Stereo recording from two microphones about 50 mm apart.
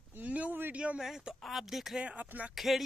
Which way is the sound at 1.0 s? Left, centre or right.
Centre.